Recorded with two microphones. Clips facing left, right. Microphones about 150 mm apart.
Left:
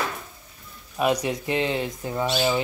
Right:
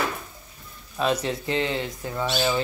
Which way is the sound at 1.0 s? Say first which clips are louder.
Left 1 dB; 15° left (ahead or behind).